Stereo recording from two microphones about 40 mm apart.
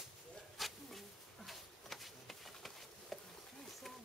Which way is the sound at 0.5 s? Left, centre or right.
Centre.